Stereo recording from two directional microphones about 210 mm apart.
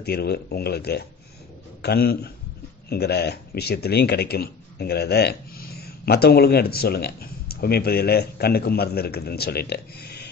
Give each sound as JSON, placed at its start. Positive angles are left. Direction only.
{"t": 0.0, "sound": "speech", "side_deg": 50}